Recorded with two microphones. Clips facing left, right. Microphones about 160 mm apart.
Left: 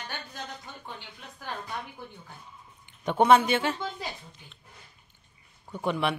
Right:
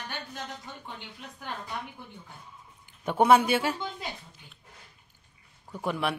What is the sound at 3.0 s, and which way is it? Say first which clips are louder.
Speech: left 1 dB; 10° right (ahead or behind).